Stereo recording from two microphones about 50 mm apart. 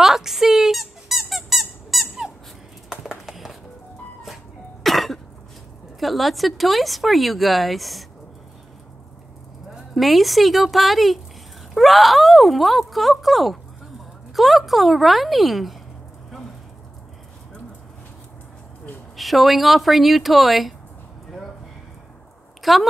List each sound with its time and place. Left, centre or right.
0.0 s squeak: centre
2.9 s a sound: centre
4.8 s cough: centre
5.9 s speech: centre
9.9 s speech: centre
19.1 s speech: centre
22.6 s a woman's voice: centre